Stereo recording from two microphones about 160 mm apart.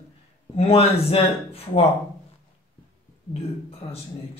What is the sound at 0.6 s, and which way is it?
Speech, 40° left (ahead or behind).